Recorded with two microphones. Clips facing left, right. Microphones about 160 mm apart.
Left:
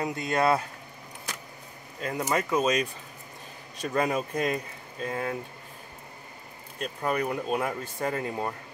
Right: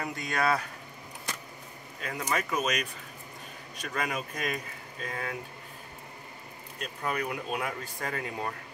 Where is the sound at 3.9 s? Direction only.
30° left (ahead or behind).